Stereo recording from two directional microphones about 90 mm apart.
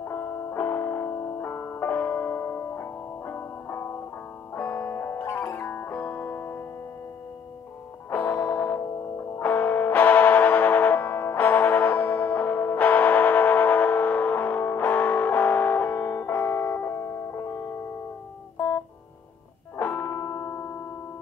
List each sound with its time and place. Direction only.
0.0 s music: 30° left (ahead or behind)
8.1 s music: 20° left (ahead or behind)
19.8 s music: 25° left (ahead or behind)